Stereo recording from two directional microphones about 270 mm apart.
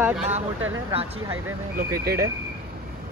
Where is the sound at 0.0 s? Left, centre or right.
Centre.